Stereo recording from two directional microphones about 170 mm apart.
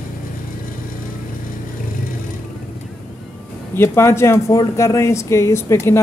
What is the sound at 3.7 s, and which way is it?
Speech, 15° left (ahead or behind).